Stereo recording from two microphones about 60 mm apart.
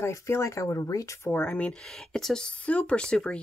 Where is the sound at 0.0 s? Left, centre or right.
Left.